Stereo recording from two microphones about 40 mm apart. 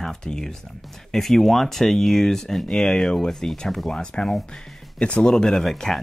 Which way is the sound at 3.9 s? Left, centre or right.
Left.